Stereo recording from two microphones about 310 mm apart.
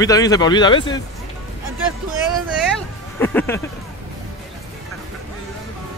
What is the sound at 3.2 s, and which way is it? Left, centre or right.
Speech, centre.